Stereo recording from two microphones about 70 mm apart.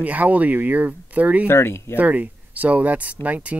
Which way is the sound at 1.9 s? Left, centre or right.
Right.